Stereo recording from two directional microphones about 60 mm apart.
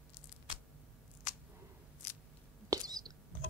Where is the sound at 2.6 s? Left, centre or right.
Right.